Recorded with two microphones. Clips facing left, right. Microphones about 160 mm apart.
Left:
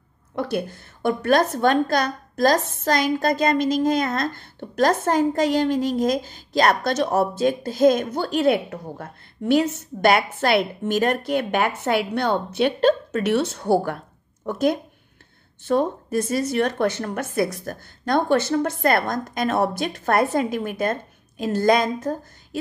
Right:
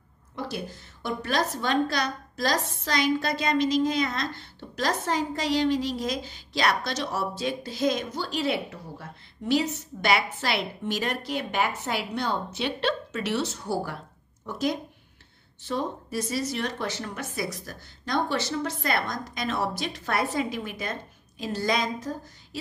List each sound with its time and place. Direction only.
0.4 s a woman's voice: 55° left (ahead or behind)